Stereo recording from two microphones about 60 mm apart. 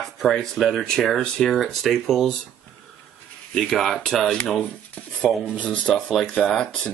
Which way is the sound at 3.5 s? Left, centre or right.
Centre.